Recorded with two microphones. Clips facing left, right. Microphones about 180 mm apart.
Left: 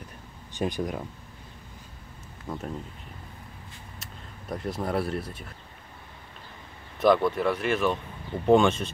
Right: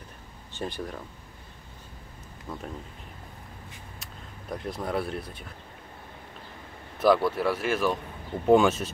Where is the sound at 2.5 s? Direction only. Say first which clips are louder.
Left 3 dB; 5° left (ahead or behind).